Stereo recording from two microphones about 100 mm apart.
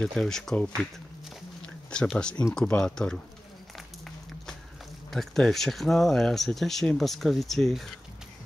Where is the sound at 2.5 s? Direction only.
5° left (ahead or behind).